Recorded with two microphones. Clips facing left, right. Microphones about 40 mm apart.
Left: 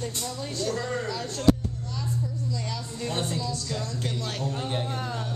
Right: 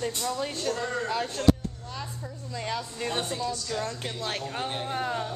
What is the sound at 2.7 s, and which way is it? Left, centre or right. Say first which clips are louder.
Speech: right 1 dB; right.